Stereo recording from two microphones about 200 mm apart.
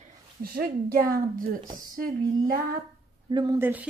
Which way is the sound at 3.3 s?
20° right (ahead or behind).